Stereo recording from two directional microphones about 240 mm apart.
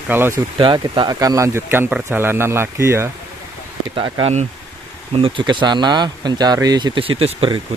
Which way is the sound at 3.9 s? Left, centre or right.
Right.